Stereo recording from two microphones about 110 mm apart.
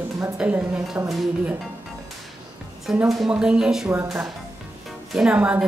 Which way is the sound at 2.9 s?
5° right (ahead or behind).